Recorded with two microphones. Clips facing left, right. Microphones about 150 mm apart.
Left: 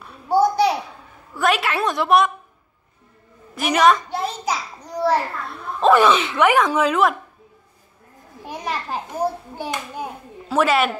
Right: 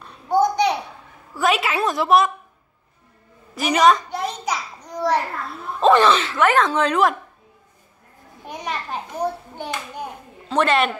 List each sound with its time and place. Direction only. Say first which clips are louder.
0.0 s a sound: left 1 dB; 5° left (ahead or behind)
1.3 s a woman's voice: even; centre (ahead or behind)
3.5 s a child's voice: even; centre (ahead or behind)
4.5 s a sound: left 1 dB; 30° left (ahead or behind)
4.9 s a child's voice: left 1 dB; 5° left (ahead or behind)
8.5 s a child's voice: left 1 dB; 5° left (ahead or behind)